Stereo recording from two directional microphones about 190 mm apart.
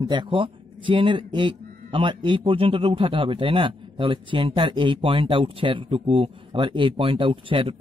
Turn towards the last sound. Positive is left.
turn(degrees=-30)  # may be behind; listen again after turning